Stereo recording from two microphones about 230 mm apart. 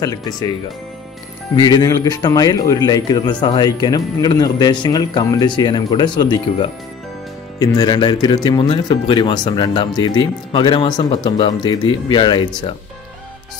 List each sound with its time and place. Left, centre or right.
0.0 s a man's voice: centre